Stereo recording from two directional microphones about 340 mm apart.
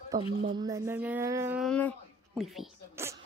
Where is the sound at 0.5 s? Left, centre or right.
Centre.